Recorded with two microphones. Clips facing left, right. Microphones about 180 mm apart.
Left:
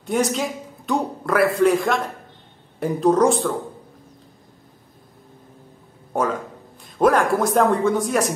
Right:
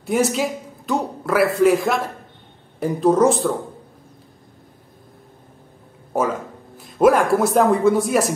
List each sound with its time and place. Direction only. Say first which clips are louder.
0.0 s a man's voice: right 2 dB; 5° right (ahead or behind)
6.8 s a man's voice: right 2 dB; 5° right (ahead or behind)